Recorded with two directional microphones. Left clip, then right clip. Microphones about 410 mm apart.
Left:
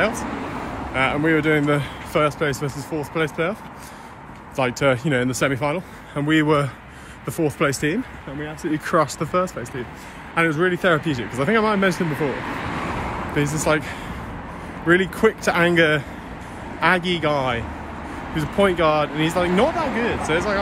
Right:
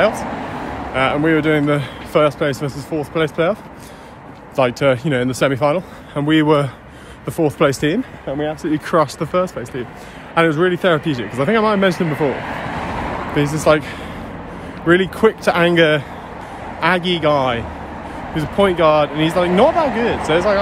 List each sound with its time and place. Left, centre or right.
0.9 s speech: centre
4.6 s speech: centre
12.1 s speech: centre
13.4 s speech: centre